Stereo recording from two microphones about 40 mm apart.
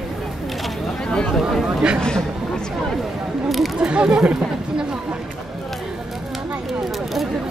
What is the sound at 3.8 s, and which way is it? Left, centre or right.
Speech, right.